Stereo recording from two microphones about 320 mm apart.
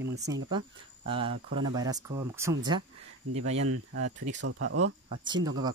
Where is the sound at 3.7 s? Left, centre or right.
Right.